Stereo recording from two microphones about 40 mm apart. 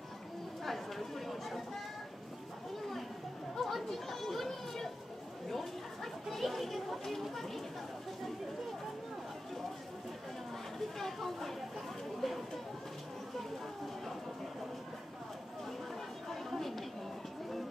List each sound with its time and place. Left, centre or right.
0.7 s chatter: centre
3.5 s chatter: centre
6.3 s chatter: centre
11.0 s chatter: centre
16.5 s a sound: centre